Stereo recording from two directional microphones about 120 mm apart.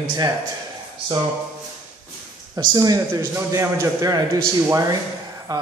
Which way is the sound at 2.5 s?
35° right (ahead or behind).